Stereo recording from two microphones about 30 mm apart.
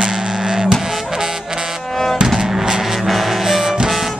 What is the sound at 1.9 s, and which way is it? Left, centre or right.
Music, centre.